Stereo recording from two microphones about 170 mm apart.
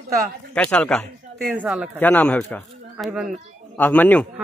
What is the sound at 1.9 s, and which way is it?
Speech, 10° left (ahead or behind).